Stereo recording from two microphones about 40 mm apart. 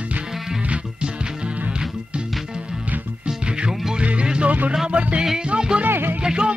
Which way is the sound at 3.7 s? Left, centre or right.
Centre.